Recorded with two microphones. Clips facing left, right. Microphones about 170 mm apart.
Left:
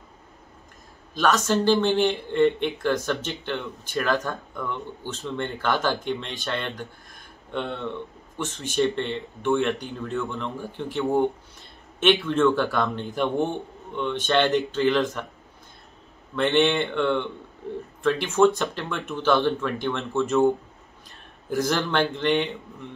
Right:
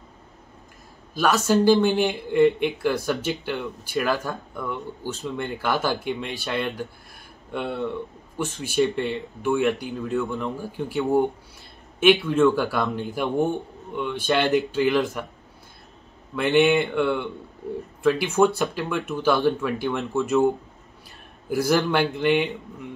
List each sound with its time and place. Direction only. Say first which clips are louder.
1.1 s speech: right 2 dB; 10° right (ahead or behind)
16.3 s speech: right 2 dB; 10° right (ahead or behind)
21.5 s speech: right 3 dB; 10° right (ahead or behind)